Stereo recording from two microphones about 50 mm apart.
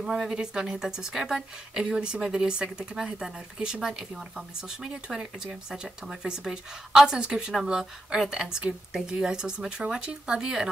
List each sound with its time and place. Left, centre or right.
0.0 s speech: centre